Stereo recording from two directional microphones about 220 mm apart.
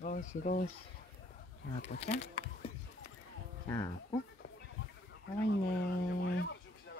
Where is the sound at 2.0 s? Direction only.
30° left (ahead or behind).